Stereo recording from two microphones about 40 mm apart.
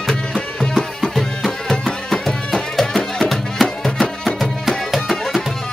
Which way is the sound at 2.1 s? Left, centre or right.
Centre.